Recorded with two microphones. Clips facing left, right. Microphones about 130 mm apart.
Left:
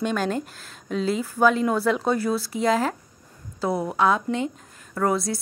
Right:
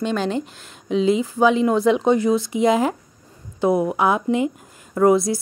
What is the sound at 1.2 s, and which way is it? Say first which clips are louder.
Speech: right 2 dB; 15° right (ahead or behind).